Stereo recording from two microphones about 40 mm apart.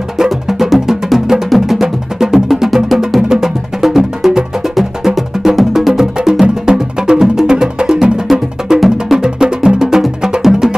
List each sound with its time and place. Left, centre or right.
0.2 s music: centre
6.4 s music: right
8.3 s music: centre
9.2 s music: centre